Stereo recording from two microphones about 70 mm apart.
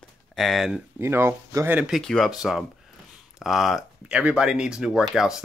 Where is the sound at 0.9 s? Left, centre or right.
Right.